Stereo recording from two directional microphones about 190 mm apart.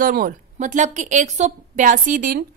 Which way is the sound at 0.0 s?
50° right (ahead or behind).